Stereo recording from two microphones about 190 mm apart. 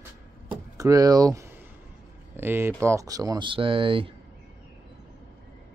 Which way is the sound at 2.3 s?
10° right (ahead or behind).